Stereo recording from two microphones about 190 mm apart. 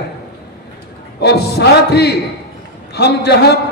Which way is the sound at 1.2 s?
60° left (ahead or behind).